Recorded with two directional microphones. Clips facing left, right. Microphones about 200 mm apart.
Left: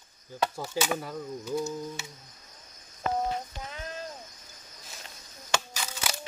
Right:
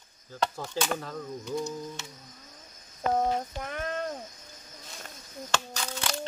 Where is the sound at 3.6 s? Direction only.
60° right (ahead or behind).